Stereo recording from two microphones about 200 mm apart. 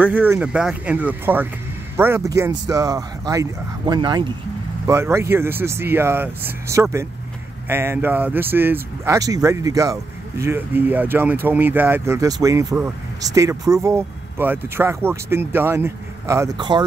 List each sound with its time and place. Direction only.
0.0 s speech: 10° right (ahead or behind)